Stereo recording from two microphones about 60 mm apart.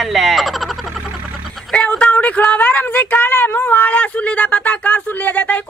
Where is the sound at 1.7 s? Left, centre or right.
Centre.